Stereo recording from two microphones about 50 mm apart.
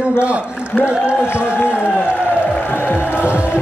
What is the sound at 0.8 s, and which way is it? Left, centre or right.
Speech, right.